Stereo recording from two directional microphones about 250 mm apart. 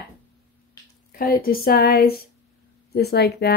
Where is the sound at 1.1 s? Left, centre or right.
Left.